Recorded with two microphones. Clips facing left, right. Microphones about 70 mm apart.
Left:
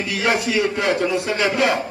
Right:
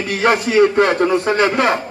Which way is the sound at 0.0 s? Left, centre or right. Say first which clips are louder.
Right 4 dB; right.